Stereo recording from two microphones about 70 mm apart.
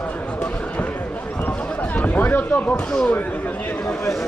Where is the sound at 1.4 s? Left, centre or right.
Left.